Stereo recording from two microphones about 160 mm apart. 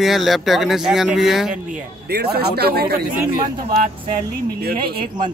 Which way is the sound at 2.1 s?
80° right.